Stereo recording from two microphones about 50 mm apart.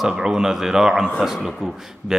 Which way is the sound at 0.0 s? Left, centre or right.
Centre.